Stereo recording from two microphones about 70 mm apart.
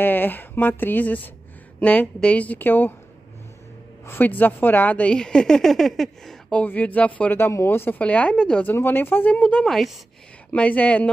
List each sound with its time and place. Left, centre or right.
0.0 s a woman's voice: left
4.0 s a woman's voice: left; by 6.3 s centre
6.5 s a woman's voice: left
8.0 s a woman's voice: centre
8.6 s a woman's voice: left
9.7 s speech: centre
10.5 s a woman's voice: left